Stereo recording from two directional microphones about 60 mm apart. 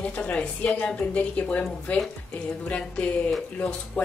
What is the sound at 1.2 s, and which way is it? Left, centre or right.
A woman's voice, left.